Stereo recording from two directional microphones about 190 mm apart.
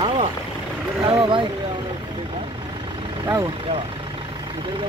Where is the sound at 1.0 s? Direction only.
25° right (ahead or behind).